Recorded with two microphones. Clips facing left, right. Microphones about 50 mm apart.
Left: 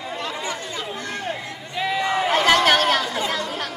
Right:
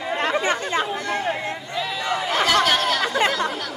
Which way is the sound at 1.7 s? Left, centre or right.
Left.